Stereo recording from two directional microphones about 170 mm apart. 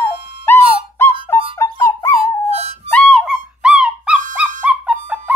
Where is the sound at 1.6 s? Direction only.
15° left (ahead or behind).